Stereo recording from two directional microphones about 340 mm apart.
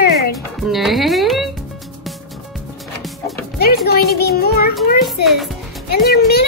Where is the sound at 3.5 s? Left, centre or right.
Left.